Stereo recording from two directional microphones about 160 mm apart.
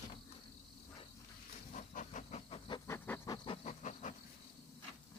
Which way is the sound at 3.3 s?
25° left (ahead or behind).